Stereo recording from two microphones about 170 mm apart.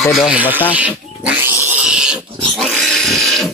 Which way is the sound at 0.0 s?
Centre (ahead or behind).